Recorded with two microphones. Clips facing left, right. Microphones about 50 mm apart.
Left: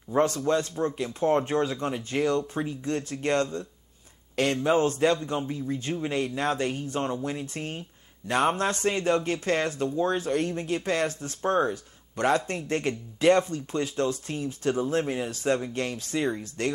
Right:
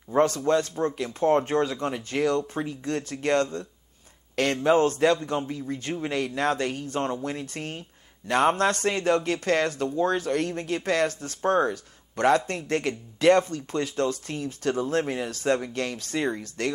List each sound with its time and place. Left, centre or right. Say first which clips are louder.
0.5 s speech: right 2 dB; right
4.6 s a man's voice: right 3 dB; right